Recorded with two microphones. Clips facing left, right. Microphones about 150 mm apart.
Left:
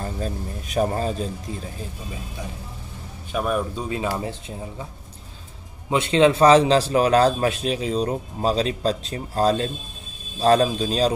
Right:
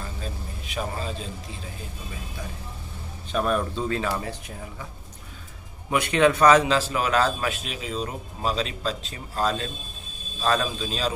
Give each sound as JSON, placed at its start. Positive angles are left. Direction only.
{"t": 0.0, "sound": "speech", "side_deg": 45}
{"t": 3.3, "sound": "speech", "side_deg": 10}
{"t": 5.9, "sound": "speech", "side_deg": 25}